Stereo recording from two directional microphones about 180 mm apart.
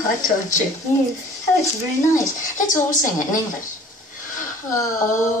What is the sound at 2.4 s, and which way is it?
A woman's voice, 45° left (ahead or behind).